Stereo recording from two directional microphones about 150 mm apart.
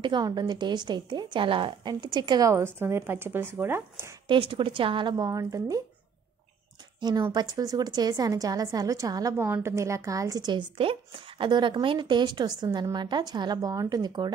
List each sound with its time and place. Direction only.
0.0 s a woman's voice: 30° right (ahead or behind)
4.3 s a woman's voice: 35° right (ahead or behind)
7.0 s a woman's voice: 30° right (ahead or behind)